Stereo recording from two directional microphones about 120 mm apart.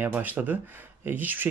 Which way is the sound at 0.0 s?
15° right (ahead or behind).